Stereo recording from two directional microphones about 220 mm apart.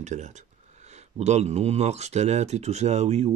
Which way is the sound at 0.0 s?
30° right (ahead or behind).